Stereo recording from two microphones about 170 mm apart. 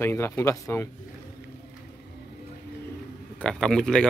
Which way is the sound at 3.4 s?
5° left (ahead or behind).